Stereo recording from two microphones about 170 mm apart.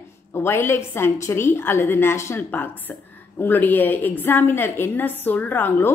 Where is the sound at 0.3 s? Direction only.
15° left (ahead or behind).